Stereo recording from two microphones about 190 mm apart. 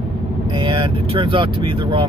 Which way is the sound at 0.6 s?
25° right (ahead or behind).